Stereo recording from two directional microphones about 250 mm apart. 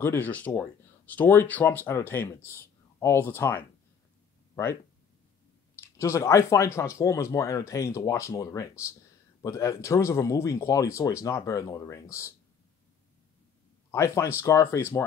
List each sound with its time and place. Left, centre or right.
0.0 s speech: centre
5.8 s speech: centre
13.9 s speech: centre